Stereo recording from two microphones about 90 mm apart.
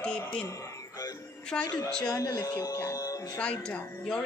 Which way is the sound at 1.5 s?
10° left (ahead or behind).